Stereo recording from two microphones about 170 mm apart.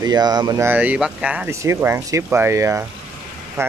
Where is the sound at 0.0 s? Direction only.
25° right (ahead or behind).